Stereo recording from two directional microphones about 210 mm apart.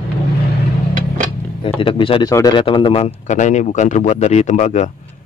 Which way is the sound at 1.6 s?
25° left (ahead or behind).